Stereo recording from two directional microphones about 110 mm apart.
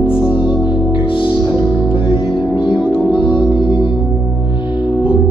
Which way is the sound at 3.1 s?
45° left (ahead or behind).